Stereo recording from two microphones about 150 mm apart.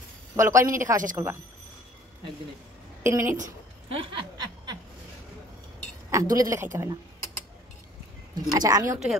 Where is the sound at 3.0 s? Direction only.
20° right (ahead or behind).